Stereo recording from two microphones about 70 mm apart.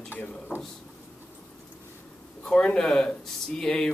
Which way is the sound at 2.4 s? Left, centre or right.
Centre.